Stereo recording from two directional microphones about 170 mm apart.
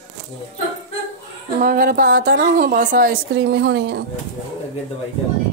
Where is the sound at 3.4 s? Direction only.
90° right.